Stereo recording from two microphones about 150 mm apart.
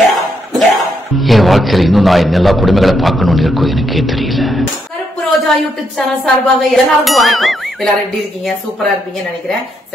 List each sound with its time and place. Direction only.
0.1 s speech: centre (ahead or behind)
5.9 s clang: centre (ahead or behind)